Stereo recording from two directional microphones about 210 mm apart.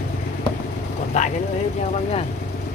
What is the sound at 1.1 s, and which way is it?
Vehicle, 35° left (ahead or behind).